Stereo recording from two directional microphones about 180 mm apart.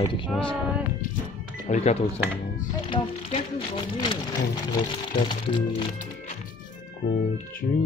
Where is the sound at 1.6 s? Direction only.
40° left (ahead or behind).